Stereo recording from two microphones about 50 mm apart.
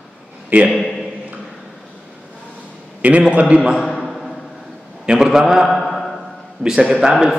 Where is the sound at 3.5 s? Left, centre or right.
Centre.